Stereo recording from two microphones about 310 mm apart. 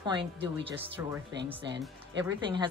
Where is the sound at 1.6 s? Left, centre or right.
Right.